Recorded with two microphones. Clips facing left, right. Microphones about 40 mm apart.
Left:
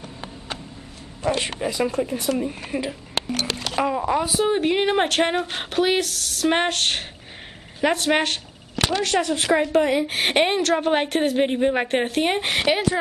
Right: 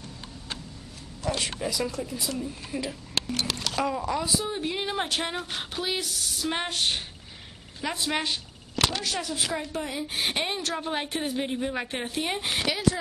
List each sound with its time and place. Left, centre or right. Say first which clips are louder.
1.2 s speech: left 6 dB; left
2.8 s a sound: left 4 dB; centre
4.4 s speech: left 10 dB; left
6.7 s speech: left 4 dB; left
7.8 s a woman's voice: left 9 dB; left
8.7 s a sound: left 4 dB; left
9.0 s a woman's voice: left 9 dB; left
10.9 s speech: left 9 dB; left